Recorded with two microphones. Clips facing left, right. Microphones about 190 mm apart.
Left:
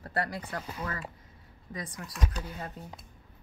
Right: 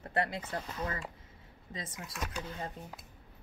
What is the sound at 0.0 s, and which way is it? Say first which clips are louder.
Speech: even; 20° right (ahead or behind).